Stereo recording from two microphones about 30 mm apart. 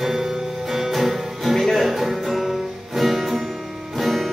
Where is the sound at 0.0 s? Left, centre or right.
Centre.